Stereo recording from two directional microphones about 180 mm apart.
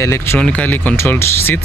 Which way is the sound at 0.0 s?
15° left (ahead or behind).